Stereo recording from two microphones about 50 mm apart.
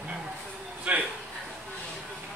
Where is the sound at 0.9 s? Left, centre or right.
Right.